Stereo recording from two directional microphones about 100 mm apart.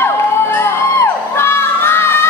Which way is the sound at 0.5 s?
25° left (ahead or behind).